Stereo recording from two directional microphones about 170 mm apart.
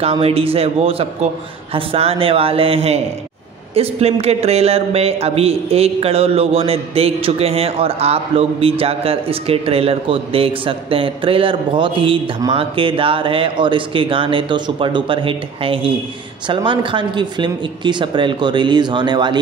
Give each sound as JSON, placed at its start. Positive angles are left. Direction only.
{"t": 0.0, "sound": "speech", "side_deg": -35}